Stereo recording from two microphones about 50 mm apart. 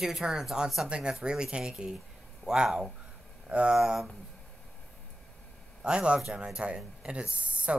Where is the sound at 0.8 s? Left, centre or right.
Centre.